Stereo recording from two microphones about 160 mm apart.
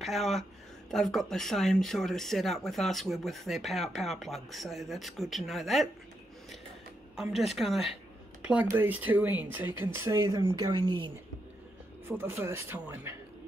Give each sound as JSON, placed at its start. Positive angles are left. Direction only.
{"t": 0.0, "sound": "speech", "side_deg": 0}
{"t": 7.2, "sound": "speech", "side_deg": 0}
{"t": 8.4, "sound": "a sound", "side_deg": -10}
{"t": 8.7, "sound": "speech", "side_deg": -10}
{"t": 10.4, "sound": "speech", "side_deg": -30}
{"t": 12.1, "sound": "speech", "side_deg": -15}